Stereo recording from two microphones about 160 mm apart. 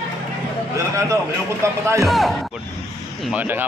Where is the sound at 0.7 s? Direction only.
20° right (ahead or behind).